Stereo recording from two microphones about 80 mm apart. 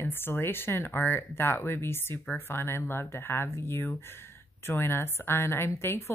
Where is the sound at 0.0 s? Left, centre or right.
Left.